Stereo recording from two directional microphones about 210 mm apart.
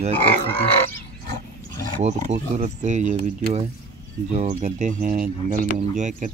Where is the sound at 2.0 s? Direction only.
30° right (ahead or behind).